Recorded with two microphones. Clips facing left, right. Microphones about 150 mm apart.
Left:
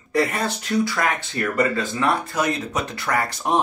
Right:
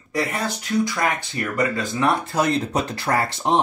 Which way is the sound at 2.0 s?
30° right (ahead or behind).